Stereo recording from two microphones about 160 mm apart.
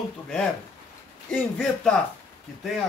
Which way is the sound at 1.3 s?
5° left (ahead or behind).